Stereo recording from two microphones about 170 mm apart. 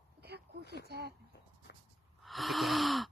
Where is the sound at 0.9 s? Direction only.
70° right (ahead or behind).